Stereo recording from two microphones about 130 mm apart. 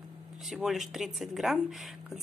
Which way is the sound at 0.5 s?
Centre (ahead or behind).